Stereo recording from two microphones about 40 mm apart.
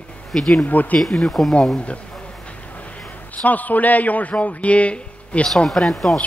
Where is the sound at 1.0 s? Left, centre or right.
Centre.